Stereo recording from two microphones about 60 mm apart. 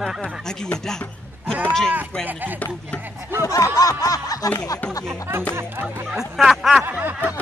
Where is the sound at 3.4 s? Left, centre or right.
Left.